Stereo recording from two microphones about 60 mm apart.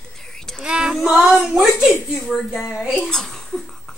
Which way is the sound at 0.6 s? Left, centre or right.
Centre.